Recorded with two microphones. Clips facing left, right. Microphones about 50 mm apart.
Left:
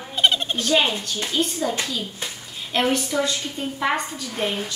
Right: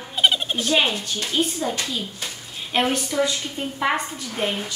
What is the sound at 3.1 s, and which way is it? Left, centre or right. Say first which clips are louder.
A woman's voice: right 1 dB; centre.